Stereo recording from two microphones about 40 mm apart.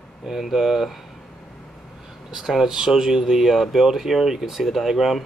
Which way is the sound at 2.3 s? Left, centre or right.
Centre.